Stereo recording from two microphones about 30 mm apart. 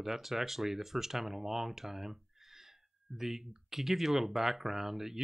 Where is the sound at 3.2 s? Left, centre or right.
Centre.